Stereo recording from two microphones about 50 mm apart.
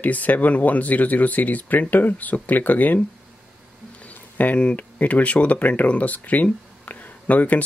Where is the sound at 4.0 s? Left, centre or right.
Left.